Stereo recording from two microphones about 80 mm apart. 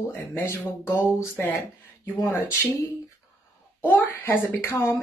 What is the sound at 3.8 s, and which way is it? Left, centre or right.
A woman's voice, left.